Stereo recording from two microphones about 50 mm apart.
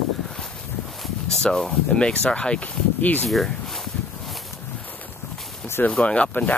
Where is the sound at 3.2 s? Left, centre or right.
Centre.